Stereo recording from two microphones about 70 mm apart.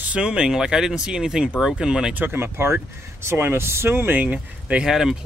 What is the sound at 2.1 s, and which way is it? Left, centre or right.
Speech, right.